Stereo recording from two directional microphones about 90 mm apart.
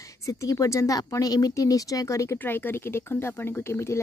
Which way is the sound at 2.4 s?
20° left (ahead or behind).